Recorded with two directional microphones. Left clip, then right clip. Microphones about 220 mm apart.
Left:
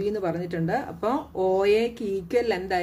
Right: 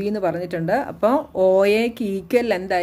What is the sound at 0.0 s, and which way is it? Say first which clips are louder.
A woman's voice: right 4 dB; 35° right (ahead or behind).